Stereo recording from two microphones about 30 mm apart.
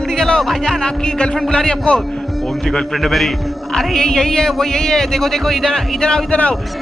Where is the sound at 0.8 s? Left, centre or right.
Left.